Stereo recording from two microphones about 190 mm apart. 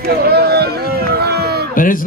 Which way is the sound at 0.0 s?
55° right (ahead or behind).